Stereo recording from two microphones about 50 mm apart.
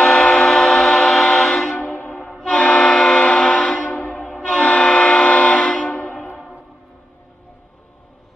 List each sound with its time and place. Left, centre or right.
0.0 s train: centre
1.5 s vehicle horn: centre
1.8 s a sound: left
2.4 s train: centre
3.7 s train: left
5.9 s train: left